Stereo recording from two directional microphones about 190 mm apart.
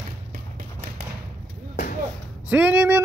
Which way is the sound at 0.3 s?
50° right (ahead or behind).